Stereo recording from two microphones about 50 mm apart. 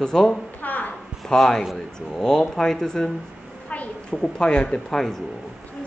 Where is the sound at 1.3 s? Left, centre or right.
Centre.